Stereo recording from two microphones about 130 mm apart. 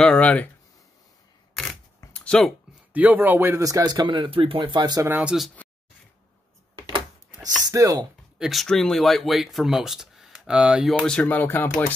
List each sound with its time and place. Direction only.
0.0 s speech: 10° left (ahead or behind)
1.5 s single-lens reflex camera: 5° left (ahead or behind)
2.1 s a sound: 5° left (ahead or behind)
2.9 s speech: 10° right (ahead or behind); by 5.0 s 35° right (ahead or behind)
5.0 s speech: 15° right (ahead or behind)
7.3 s speech: 25° right (ahead or behind)
8.4 s speech: centre (ahead or behind)
11.1 s speech: 10° left (ahead or behind)